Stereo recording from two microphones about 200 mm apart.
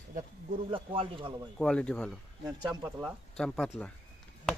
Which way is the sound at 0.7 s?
25° right (ahead or behind).